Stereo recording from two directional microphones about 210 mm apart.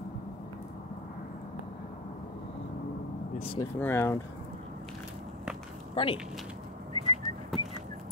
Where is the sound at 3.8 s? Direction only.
10° left (ahead or behind).